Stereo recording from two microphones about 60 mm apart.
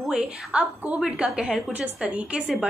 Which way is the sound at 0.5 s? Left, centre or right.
Centre.